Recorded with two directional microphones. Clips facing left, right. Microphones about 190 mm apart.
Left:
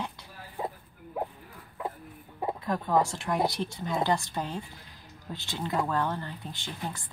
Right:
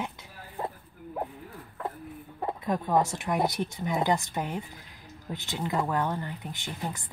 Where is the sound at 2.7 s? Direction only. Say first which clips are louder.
Right 1 dB; 20° right (ahead or behind).